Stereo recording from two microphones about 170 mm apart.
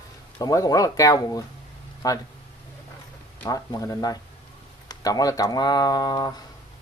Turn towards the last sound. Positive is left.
turn(degrees=25)  # may be behind; listen again after turning